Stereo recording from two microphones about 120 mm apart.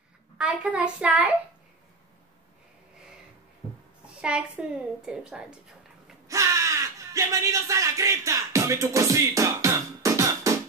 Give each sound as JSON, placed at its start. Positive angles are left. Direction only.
{"t": 0.4, "sound": "a woman's voice", "side_deg": -10}
{"t": 4.1, "sound": "a woman's voice", "side_deg": -10}
{"t": 6.2, "sound": "a sound", "side_deg": -25}